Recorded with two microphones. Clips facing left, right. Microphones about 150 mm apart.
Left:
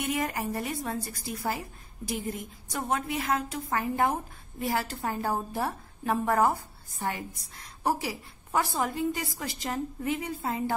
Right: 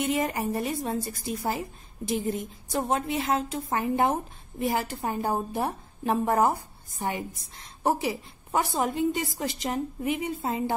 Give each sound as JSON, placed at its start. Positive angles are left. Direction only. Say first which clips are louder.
{"t": 0.0, "sound": "a woman's voice", "louder": "right 3 dB", "side_deg": -25}